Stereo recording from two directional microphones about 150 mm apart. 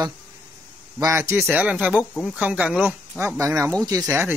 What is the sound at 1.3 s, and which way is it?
Speech, 10° right (ahead or behind).